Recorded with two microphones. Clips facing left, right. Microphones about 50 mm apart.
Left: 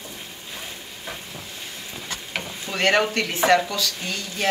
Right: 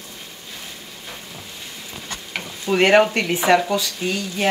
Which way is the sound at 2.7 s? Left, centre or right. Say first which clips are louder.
Right 6 dB; centre.